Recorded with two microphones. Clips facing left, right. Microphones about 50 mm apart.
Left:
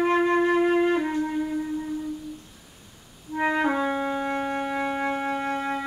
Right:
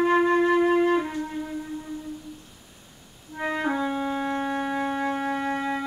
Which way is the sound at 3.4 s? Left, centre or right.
Centre.